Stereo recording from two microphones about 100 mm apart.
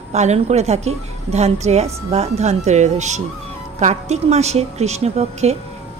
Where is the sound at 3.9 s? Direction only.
90° right.